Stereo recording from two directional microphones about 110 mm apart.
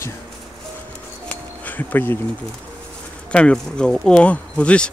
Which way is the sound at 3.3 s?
10° left (ahead or behind).